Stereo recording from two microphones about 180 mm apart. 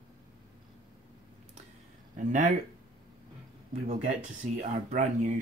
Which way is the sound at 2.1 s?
45° right (ahead or behind).